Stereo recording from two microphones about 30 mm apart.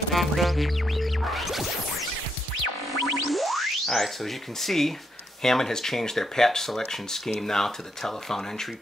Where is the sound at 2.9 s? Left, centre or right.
Centre.